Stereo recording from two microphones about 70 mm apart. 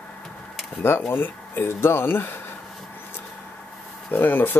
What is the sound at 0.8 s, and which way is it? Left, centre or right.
Speech, left.